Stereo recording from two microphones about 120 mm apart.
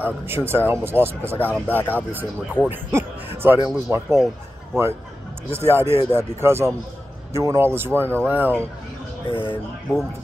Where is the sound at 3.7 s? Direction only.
20° right (ahead or behind).